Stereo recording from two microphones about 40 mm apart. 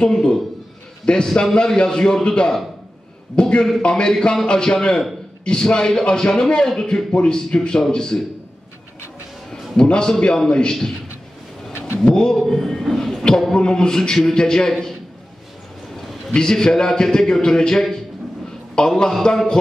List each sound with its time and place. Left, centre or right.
0.0 s a man's voice: centre
9.5 s music: left
10.2 s a man's voice: centre
12.0 s a man's voice: centre
13.6 s a man's voice: centre
16.3 s a man's voice: centre